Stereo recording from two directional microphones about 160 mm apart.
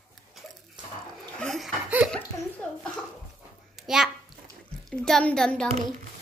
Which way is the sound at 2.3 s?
20° left (ahead or behind).